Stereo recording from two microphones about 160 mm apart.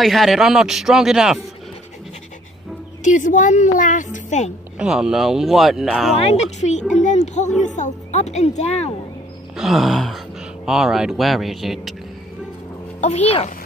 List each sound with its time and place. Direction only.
0.0 s a man's voice: centre (ahead or behind)
3.0 s a woman's voice: 50° left (ahead or behind)
4.7 s a man's voice: 5° right (ahead or behind)
6.1 s a woman's voice: 40° left (ahead or behind)
7.0 s a sound: 50° left (ahead or behind)
7.6 s a woman's voice: 50° left (ahead or behind)
9.6 s speech: centre (ahead or behind)
13.0 s a child's voice: 40° left (ahead or behind)